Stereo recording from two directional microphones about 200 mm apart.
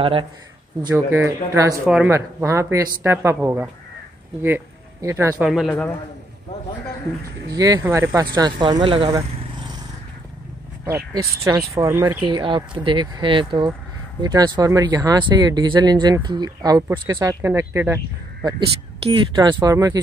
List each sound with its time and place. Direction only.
0.0 s speech: 25° right (ahead or behind)
0.8 s speech: 15° right (ahead or behind)
5.7 s a man's voice: 10° left (ahead or behind)
7.5 s speech: 20° right (ahead or behind)
11.4 s speech: 15° right (ahead or behind)